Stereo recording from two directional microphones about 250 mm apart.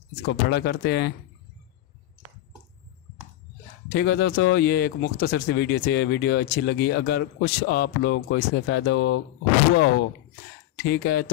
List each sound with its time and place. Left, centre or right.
0.2 s speech: left
3.9 s speech: left